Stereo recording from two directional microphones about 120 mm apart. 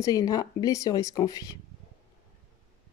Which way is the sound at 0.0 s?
30° left (ahead or behind).